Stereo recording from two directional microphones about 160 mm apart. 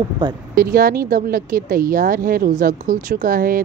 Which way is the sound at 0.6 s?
65° right (ahead or behind).